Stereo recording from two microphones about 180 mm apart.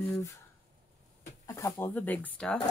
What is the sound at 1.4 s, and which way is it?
Speech, 15° left (ahead or behind).